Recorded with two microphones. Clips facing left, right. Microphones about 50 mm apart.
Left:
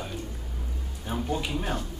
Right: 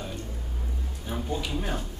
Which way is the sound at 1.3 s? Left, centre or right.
Left.